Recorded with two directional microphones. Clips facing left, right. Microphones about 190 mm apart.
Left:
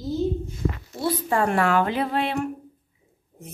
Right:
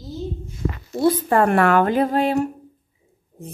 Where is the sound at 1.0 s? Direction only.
55° right (ahead or behind).